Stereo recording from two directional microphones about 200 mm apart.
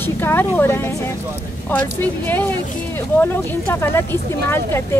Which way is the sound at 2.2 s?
10° left (ahead or behind).